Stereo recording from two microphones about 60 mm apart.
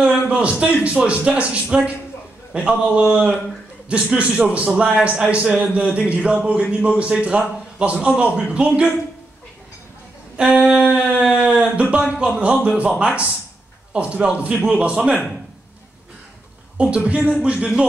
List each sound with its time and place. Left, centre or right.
0.0 s a man's voice: centre
10.3 s a sound: centre
11.4 s a man's voice: centre
16.7 s speech: centre